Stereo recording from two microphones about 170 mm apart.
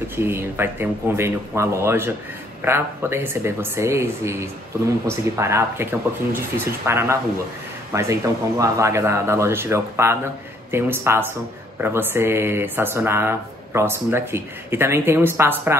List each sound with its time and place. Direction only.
0.1 s speech: 15° right (ahead or behind)